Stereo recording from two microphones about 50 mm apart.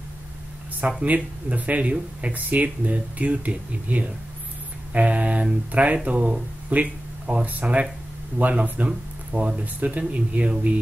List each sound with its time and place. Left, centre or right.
1.0 s speech: right